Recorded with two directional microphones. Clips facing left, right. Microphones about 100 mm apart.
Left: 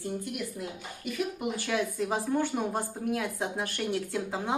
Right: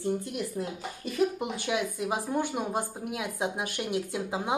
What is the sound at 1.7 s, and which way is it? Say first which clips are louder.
Speech: even; 15° right (ahead or behind).